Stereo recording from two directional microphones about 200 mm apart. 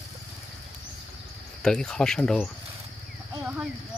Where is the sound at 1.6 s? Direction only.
5° left (ahead or behind).